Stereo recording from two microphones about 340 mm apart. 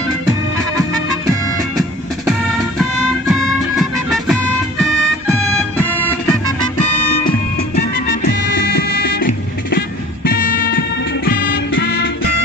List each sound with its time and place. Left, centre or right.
3.3 s music: centre
7.7 s music: left